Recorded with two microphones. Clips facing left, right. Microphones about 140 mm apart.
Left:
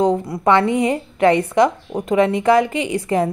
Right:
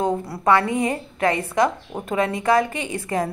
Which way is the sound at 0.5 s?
20° left (ahead or behind).